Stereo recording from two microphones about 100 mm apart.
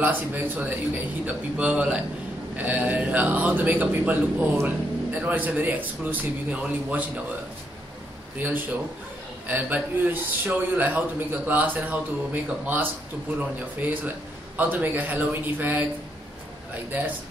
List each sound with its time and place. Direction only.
0.0 s speech: 20° right (ahead or behind)
8.4 s a man's voice: 20° right (ahead or behind)